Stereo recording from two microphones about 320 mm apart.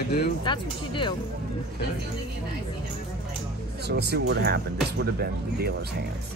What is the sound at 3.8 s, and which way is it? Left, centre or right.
Speech, right.